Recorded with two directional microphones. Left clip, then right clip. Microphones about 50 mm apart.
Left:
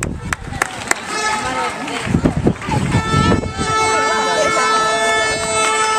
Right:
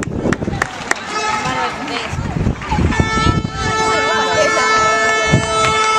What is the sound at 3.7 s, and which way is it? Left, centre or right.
Vehicle, right.